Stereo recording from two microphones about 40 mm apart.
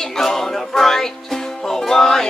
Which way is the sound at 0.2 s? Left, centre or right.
Centre.